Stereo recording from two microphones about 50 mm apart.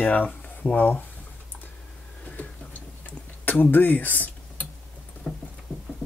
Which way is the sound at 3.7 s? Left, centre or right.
Left.